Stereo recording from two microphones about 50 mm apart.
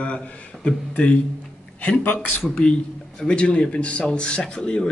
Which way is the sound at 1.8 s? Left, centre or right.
Left.